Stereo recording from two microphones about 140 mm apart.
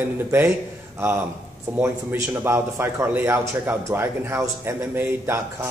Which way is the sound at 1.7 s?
15° right (ahead or behind).